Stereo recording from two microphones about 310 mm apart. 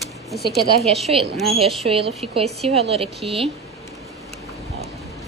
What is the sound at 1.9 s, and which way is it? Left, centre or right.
A woman's voice, centre.